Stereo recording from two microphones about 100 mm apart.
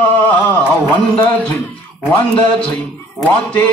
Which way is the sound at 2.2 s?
10° left (ahead or behind).